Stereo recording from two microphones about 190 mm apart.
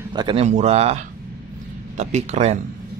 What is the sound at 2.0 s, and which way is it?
Speech, 35° right (ahead or behind).